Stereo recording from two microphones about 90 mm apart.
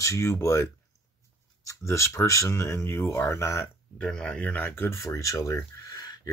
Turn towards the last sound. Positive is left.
turn(degrees=40)  # may be behind; listen again after turning